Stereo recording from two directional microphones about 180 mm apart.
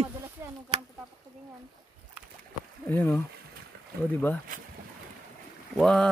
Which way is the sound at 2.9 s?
10° left (ahead or behind).